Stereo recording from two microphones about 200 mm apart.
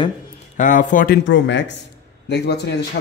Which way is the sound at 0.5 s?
40° left (ahead or behind).